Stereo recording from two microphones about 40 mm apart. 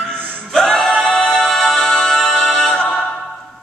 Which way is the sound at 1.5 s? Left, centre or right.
Centre.